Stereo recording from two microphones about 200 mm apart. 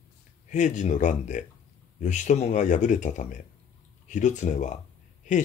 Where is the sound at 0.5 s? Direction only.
40° left (ahead or behind).